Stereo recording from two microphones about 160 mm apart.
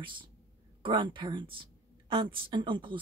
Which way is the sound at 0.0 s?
30° right (ahead or behind).